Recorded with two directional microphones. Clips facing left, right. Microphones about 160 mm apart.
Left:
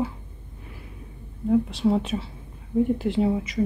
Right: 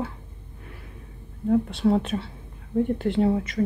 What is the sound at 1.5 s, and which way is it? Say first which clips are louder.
A woman's voice: even; centre (ahead or behind).